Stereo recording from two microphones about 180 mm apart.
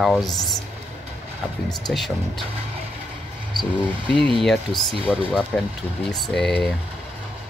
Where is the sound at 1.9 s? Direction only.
Centre (ahead or behind).